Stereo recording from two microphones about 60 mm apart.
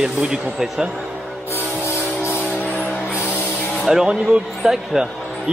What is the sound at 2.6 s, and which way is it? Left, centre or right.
Music, left.